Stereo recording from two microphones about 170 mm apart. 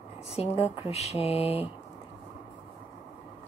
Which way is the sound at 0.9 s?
40° left (ahead or behind).